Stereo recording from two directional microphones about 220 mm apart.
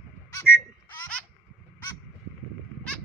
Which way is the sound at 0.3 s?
10° left (ahead or behind).